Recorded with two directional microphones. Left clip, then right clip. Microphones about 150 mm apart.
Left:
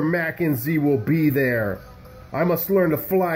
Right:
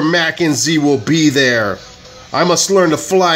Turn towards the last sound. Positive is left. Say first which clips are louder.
# right 9 dB
turn(degrees=-20)  # may be behind; listen again after turning